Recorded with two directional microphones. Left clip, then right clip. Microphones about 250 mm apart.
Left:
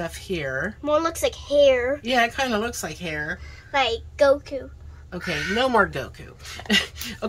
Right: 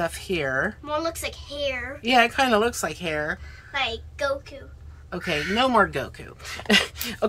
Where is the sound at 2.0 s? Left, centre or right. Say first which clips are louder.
Right 8 dB; centre.